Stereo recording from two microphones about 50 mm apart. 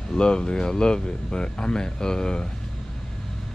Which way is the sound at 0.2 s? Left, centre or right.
Centre.